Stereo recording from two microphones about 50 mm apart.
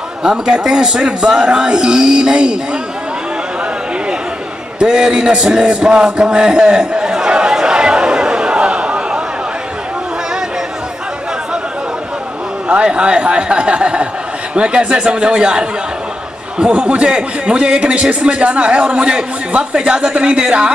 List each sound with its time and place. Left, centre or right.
0.2 s a man's voice: centre
4.7 s music: centre
12.6 s a man's voice: right